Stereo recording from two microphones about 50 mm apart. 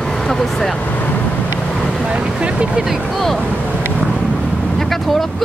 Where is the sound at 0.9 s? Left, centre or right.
Left.